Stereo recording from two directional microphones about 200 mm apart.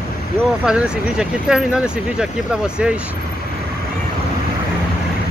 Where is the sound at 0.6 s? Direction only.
5° right (ahead or behind).